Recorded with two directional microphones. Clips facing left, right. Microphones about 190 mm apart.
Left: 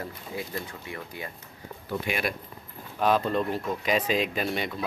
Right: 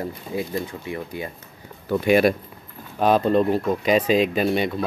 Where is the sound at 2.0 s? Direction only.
40° right (ahead or behind).